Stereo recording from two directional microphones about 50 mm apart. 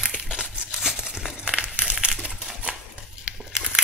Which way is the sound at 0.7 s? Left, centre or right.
Centre.